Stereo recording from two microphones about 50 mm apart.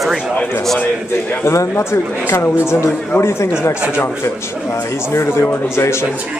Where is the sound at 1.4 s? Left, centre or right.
Left.